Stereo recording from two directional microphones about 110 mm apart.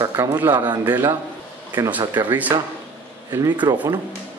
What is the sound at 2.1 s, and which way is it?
Speech, 20° right (ahead or behind).